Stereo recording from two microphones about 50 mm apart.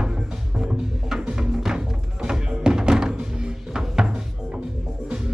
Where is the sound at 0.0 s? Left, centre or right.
Centre.